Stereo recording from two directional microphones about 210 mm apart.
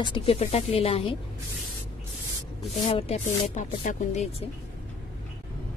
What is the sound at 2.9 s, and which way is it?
A woman's voice, 30° left (ahead or behind).